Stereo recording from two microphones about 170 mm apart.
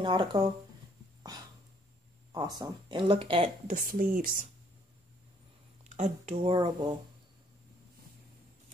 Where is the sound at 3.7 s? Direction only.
55° right (ahead or behind).